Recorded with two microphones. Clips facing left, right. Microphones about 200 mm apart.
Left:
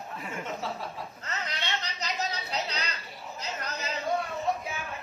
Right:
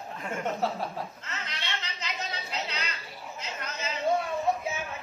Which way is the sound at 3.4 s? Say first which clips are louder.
Left 2 dB; 35° left (ahead or behind).